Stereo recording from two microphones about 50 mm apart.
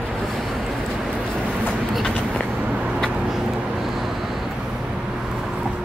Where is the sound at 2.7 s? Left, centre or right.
Centre.